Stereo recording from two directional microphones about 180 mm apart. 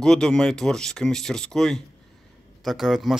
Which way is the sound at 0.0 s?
5° left (ahead or behind).